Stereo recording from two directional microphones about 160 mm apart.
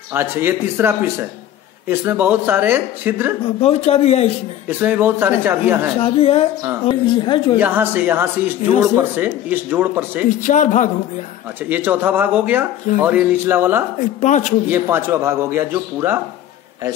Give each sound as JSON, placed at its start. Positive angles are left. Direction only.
{"t": 0.1, "sound": "a man's voice", "side_deg": -15}
{"t": 3.6, "sound": "a man's voice", "side_deg": 40}
{"t": 4.6, "sound": "a man's voice", "side_deg": -10}
{"t": 5.9, "sound": "a man's voice", "side_deg": 35}
{"t": 7.5, "sound": "a man's voice", "side_deg": -10}
{"t": 10.4, "sound": "speech", "side_deg": 50}
{"t": 11.7, "sound": "a man's voice", "side_deg": -10}
{"t": 13.9, "sound": "speech", "side_deg": 50}
{"t": 14.7, "sound": "a man's voice", "side_deg": -15}